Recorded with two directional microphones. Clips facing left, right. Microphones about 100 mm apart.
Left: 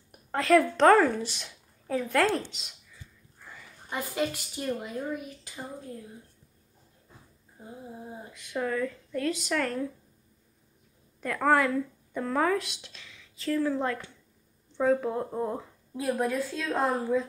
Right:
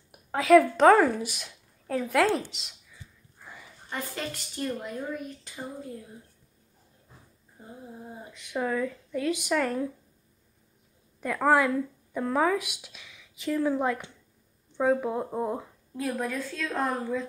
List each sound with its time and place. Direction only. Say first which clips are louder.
0.1 s a woman's voice: right 4 dB; 5° right (ahead or behind)
3.4 s a sound: right 1 dB; 15° right (ahead or behind)
3.9 s speech: left 4 dB; 10° left (ahead or behind)
8.5 s speech: right 1 dB; 10° right (ahead or behind)
11.1 s speech: right 1 dB; 10° right (ahead or behind)
15.9 s speech: left 2 dB; 10° left (ahead or behind)